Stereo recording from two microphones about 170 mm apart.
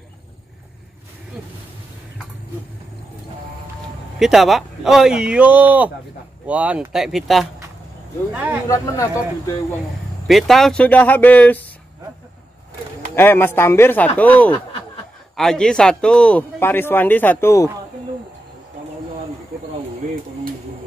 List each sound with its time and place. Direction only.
4.2 s speech: centre (ahead or behind)
8.3 s speech: 10° right (ahead or behind)
8.6 s a man's voice: 20° left (ahead or behind)
10.2 s a man's voice: centre (ahead or behind)
13.1 s a man's voice: 15° left (ahead or behind)